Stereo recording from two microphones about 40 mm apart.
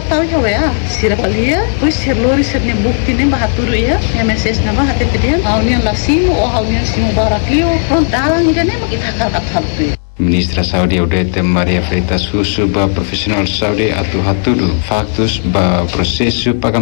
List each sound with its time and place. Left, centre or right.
0.1 s speech: centre